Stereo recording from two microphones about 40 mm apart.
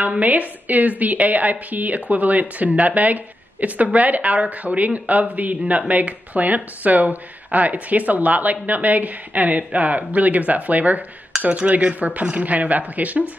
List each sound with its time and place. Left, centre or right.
0.2 s speech: right